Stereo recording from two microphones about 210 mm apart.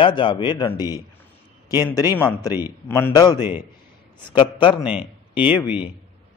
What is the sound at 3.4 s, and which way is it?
Speech, 10° right (ahead or behind).